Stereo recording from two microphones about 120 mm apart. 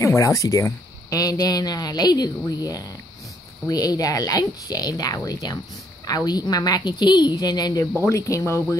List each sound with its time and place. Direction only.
0.0 s speech: 25° left (ahead or behind)
3.6 s speech: 30° left (ahead or behind)